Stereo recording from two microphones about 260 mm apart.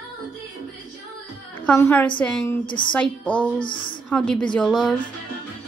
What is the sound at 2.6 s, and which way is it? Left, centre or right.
Speech, centre.